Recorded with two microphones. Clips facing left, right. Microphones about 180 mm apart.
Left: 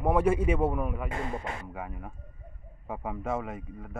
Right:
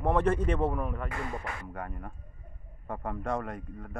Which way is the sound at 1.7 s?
5° left (ahead or behind).